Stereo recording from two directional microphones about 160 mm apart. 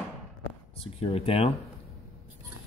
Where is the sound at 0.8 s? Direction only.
35° left (ahead or behind).